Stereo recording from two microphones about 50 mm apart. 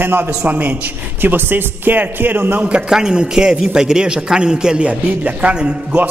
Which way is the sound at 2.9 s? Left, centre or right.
Centre.